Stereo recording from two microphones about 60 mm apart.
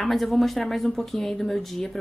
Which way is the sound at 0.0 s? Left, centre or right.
Centre.